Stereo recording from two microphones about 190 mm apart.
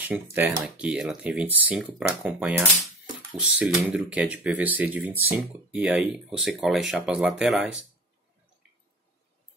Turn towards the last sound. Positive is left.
turn(degrees=-5)  # may be behind; listen again after turning